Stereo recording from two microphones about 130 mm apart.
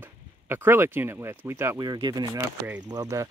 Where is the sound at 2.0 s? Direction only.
30° right (ahead or behind).